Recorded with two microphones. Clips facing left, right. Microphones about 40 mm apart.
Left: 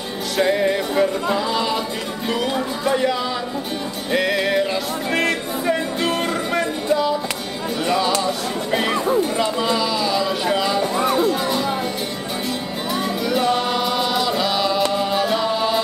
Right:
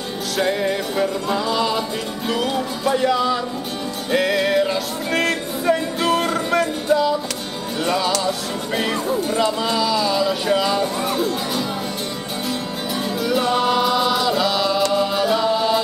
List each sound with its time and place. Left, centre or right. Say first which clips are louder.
0.4 s speech: left 3 dB; centre
4.1 s music: right 1 dB; centre
7.8 s speech: even; centre
8.7 s speech: left 3 dB; centre
11.0 s speech: left 3 dB; centre
13.2 s music: right 2 dB; centre